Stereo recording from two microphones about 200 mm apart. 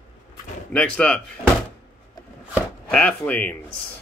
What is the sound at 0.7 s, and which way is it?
Speech, 5° left (ahead or behind).